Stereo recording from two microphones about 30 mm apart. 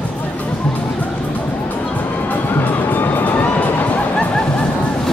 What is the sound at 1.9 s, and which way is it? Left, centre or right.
Music, left.